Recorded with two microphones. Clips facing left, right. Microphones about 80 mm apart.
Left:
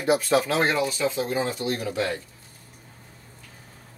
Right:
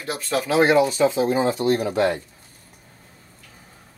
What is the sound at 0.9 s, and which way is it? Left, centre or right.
Speech, right.